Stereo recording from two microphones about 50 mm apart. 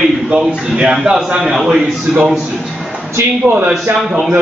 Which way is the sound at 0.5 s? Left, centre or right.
Centre.